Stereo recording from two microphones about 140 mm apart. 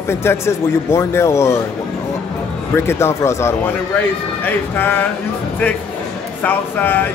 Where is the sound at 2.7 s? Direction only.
20° left (ahead or behind).